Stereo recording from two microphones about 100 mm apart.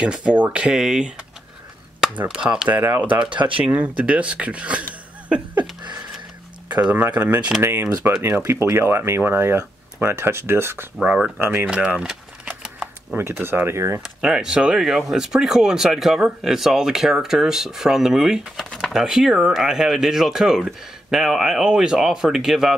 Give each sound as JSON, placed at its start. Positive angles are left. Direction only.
{"t": 0.0, "sound": "speech", "side_deg": -10}
{"t": 2.8, "sound": "speech", "side_deg": -20}
{"t": 5.3, "sound": "a sound", "side_deg": -15}
{"t": 6.7, "sound": "speech", "side_deg": -15}
{"t": 7.6, "sound": "speech", "side_deg": -25}
{"t": 11.0, "sound": "speech", "side_deg": -5}
{"t": 11.3, "sound": "speech", "side_deg": -20}
{"t": 12.6, "sound": "typewriter", "side_deg": -10}
{"t": 13.2, "sound": "speech", "side_deg": -20}
{"t": 14.2, "sound": "speech", "side_deg": -5}
{"t": 18.7, "sound": "a sound", "side_deg": 10}
{"t": 18.9, "sound": "speech", "side_deg": -5}